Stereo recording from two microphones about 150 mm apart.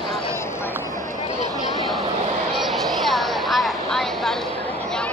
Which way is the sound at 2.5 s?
Centre (ahead or behind).